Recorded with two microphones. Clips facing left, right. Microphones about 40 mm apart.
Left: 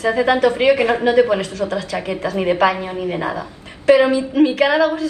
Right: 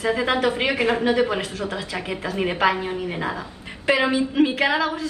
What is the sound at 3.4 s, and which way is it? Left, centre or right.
Speech, right.